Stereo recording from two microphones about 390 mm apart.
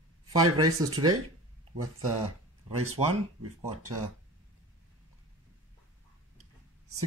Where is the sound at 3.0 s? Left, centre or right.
Centre.